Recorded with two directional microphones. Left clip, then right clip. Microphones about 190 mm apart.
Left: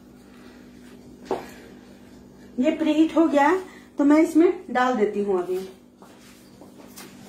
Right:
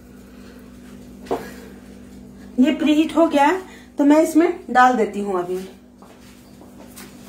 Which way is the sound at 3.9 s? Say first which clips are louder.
Right 3 dB; 15° right (ahead or behind).